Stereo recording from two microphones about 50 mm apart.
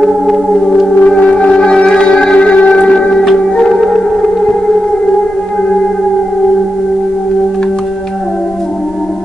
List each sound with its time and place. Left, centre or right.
0.0 s organ: centre
1.0 s music: left